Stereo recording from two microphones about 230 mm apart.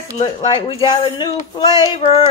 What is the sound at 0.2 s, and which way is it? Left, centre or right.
Speech, left.